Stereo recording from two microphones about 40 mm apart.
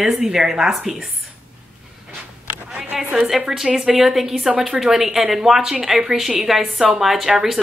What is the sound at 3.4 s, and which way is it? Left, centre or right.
Speech, centre.